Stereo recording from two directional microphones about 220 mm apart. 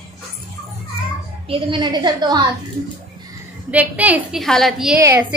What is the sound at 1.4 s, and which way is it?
A woman's voice, 25° right (ahead or behind).